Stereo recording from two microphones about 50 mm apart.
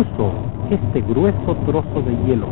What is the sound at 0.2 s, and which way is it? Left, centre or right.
Speech, right.